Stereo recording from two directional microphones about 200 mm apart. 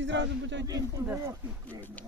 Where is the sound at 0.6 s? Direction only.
15° right (ahead or behind).